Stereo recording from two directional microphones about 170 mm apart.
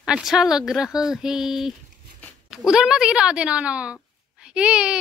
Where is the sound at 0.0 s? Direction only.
5° right (ahead or behind).